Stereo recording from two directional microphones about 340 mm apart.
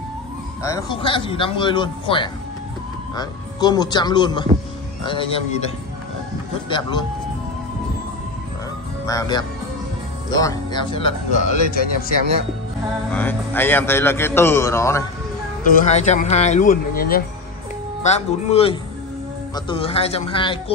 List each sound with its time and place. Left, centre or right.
0.6 s a man's voice: centre
6.7 s a man's voice: centre
9.0 s a man's voice: centre
13.1 s a man's voice: centre
15.7 s a man's voice: left